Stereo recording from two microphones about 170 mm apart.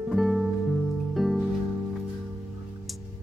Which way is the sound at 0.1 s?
Centre (ahead or behind).